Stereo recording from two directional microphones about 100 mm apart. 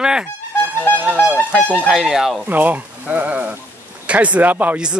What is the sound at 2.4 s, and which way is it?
Speech, 15° right (ahead or behind).